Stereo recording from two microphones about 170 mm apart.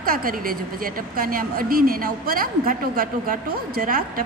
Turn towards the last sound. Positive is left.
turn(degrees=-55)  # may be behind; listen again after turning